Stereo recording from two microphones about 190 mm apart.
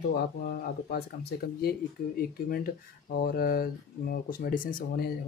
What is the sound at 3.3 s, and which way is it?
Speech, 50° left (ahead or behind).